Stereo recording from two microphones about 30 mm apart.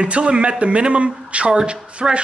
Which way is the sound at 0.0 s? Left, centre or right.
Right.